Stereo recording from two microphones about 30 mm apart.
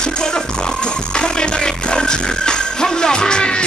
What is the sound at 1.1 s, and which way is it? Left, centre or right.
Music, left.